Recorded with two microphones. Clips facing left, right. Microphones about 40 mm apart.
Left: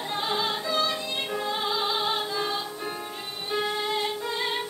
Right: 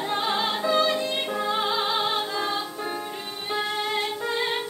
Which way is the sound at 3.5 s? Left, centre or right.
Centre.